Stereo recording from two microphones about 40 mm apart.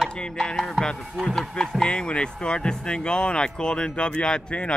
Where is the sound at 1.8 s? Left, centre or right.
Left.